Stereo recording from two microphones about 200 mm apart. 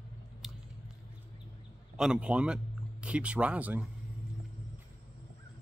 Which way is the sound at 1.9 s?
5° right (ahead or behind).